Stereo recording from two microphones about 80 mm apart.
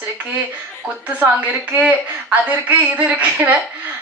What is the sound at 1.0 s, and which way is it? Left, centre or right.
A woman's voice, right.